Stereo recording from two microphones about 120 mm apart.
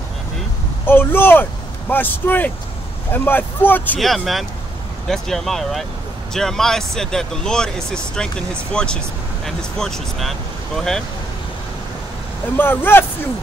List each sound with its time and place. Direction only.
0.8 s speech: 20° left (ahead or behind)
4.0 s speech: centre (ahead or behind)
12.5 s speech: 20° left (ahead or behind)